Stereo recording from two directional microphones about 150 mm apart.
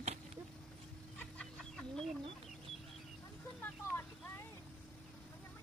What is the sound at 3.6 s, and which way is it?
Vehicle, 15° left (ahead or behind).